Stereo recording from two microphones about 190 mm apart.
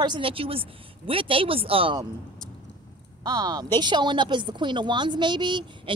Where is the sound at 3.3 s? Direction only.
20° right (ahead or behind).